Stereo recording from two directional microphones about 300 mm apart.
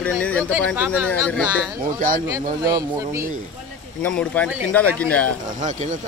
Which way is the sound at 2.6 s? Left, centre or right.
Centre.